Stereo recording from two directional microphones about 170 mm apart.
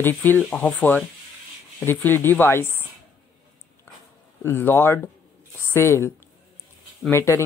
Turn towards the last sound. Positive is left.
turn(degrees=15)  # may be behind; listen again after turning